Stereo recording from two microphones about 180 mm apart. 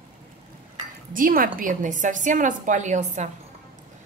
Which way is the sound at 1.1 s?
50° right (ahead or behind).